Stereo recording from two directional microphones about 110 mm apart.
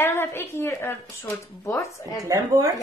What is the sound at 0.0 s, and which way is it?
A woman's voice, 20° left (ahead or behind).